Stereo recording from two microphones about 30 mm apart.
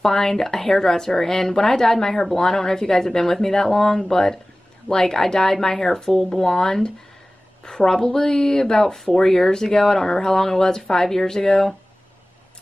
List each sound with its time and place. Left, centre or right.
0.0 s speech: centre